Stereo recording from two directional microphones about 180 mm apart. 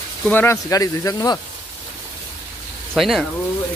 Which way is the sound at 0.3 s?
10° left (ahead or behind).